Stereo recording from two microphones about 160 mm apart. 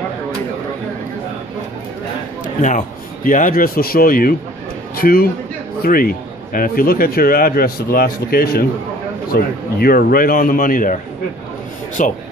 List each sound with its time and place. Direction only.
2.4 s a man's voice: 50° left (ahead or behind)
12.0 s a man's voice: 55° left (ahead or behind)